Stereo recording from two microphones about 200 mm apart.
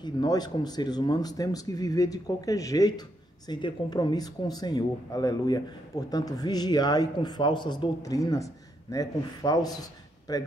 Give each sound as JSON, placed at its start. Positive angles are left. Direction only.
{"t": 0.0, "sound": "speech", "side_deg": 20}